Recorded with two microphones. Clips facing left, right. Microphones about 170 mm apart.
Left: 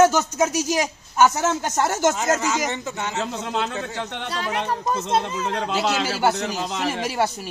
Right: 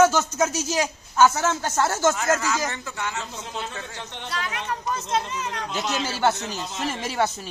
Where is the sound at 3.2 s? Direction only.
70° left (ahead or behind).